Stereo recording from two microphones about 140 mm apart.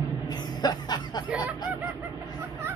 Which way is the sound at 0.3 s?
30° left (ahead or behind).